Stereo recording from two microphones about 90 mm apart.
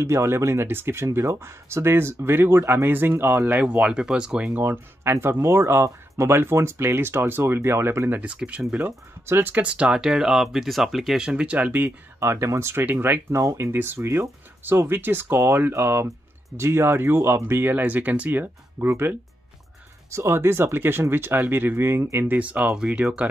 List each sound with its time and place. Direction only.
0.0 s speech: 30° right (ahead or behind)
3.5 s speech: 15° right (ahead or behind)
4.6 s speech: 25° right (ahead or behind)
8.2 s speech: 15° right (ahead or behind)
12.2 s speech: 30° right (ahead or behind); by 23.2 s 15° right (ahead or behind)